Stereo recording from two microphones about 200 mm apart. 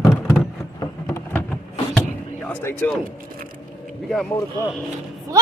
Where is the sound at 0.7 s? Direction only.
15° left (ahead or behind).